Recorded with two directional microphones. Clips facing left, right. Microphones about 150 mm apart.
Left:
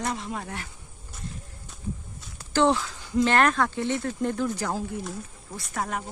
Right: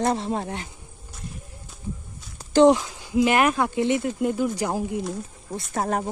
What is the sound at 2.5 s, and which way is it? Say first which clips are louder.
Speech: right 6 dB; 15° right (ahead or behind).